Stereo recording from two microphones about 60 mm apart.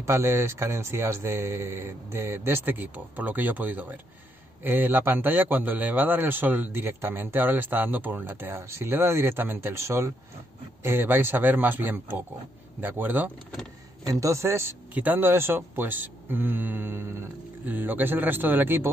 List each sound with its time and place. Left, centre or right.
0.0 s a man's voice: right
10.8 s a man's voice: right
14.2 s speech: right
15.0 s a man's voice: right
17.6 s a man's voice: right